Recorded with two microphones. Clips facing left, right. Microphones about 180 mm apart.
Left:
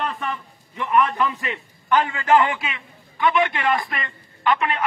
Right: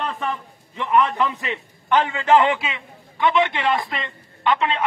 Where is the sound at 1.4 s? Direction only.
20° right (ahead or behind).